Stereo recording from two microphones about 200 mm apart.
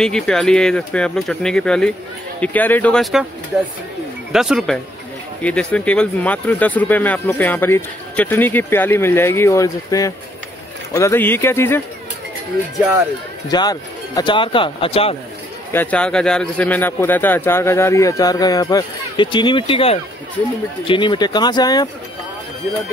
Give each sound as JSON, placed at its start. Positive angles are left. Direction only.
{"t": 0.0, "sound": "speech", "side_deg": 5}
{"t": 4.3, "sound": "speech", "side_deg": 0}
{"t": 13.5, "sound": "speech", "side_deg": 20}
{"t": 15.7, "sound": "speech", "side_deg": 10}